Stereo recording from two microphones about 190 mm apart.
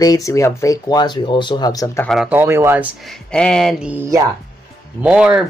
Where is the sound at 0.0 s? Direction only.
20° left (ahead or behind).